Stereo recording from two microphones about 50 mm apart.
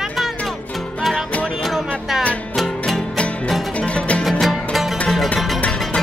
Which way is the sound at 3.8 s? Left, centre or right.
Left.